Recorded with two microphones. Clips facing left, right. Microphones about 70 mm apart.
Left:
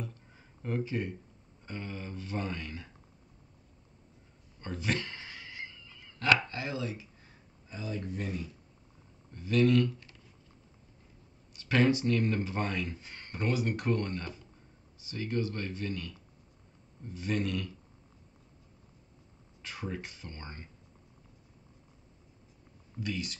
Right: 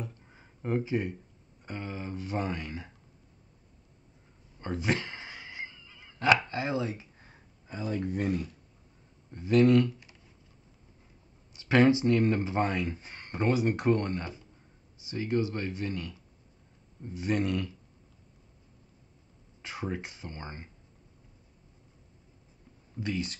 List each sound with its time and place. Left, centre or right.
0.0 s a sound: centre
1.7 s speech: centre
4.6 s a sound: centre
7.6 s speech: right
9.3 s speech: right
11.5 s speech: centre
19.6 s speech: centre
22.9 s speech: right